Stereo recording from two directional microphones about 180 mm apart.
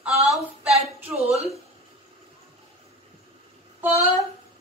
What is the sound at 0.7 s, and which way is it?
Speech, 35° right (ahead or behind).